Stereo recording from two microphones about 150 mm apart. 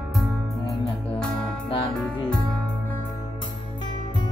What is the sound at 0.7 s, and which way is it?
Music, centre (ahead or behind).